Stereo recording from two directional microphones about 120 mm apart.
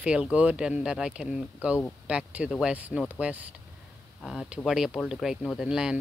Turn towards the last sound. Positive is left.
turn(degrees=-5)  # may be behind; listen again after turning